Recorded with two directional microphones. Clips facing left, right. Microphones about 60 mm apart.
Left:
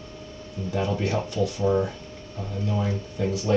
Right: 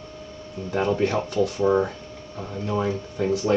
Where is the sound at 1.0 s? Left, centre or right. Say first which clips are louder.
Right 3 dB; right.